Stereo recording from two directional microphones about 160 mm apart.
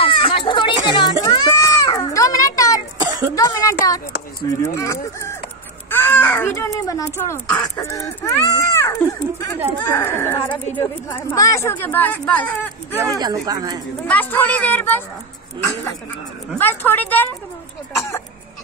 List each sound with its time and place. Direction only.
0.0 s music: 35° left (ahead or behind)
1.2 s baby cry: 20° left (ahead or behind)
3.3 s a sound: 20° left (ahead or behind)
4.5 s speech: 20° left (ahead or behind)
5.9 s a sound: 15° left (ahead or behind)
7.2 s a woman's voice: 20° left (ahead or behind)
13.0 s speech: 20° right (ahead or behind)
14.0 s a woman's voice: 10° left (ahead or behind)
16.5 s a woman's voice: 10° left (ahead or behind)